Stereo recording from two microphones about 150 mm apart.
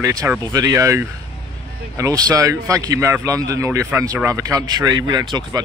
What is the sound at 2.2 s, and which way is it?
A man's voice, 25° right (ahead or behind).